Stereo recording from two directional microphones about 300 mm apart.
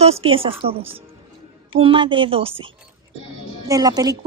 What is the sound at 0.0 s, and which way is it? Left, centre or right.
A woman's voice, centre.